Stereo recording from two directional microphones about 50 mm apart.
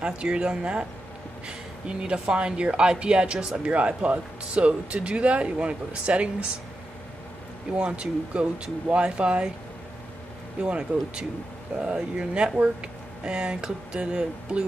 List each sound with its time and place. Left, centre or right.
0.0 s speech: centre
1.9 s speech: right
7.7 s speech: right
10.6 s speech: centre